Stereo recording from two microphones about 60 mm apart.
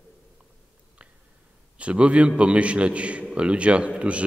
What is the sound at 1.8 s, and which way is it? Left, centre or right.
A man's voice, centre.